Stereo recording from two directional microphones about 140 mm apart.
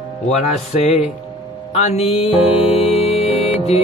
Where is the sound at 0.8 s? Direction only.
50° left (ahead or behind).